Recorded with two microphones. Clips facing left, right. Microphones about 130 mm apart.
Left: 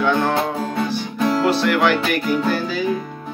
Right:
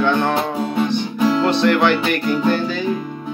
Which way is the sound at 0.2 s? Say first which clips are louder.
Right 1 dB; 15° right (ahead or behind).